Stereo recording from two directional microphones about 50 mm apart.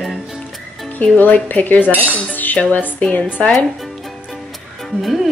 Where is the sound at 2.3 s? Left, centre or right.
Left.